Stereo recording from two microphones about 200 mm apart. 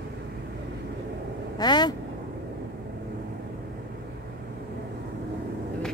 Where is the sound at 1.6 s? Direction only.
20° left (ahead or behind).